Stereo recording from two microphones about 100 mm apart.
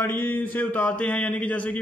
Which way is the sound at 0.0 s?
20° left (ahead or behind).